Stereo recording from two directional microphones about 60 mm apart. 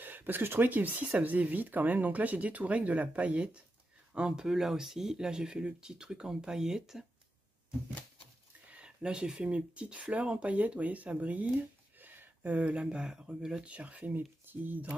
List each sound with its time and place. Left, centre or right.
0.0 s speech: right; by 7.1 s centre
8.6 s speech: centre
13.7 s speech: right